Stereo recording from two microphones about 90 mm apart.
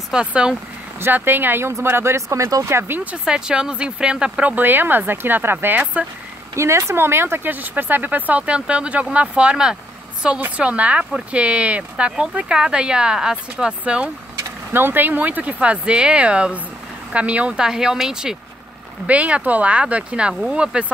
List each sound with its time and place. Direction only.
0.1 s speech: 10° right (ahead or behind)
0.9 s speech: 25° right (ahead or behind)
6.5 s speech: 30° right (ahead or behind); by 14.1 s 10° right (ahead or behind)
14.7 s speech: 25° right (ahead or behind)